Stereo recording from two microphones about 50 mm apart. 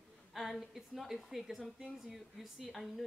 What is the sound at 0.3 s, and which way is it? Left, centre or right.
A woman's voice, centre.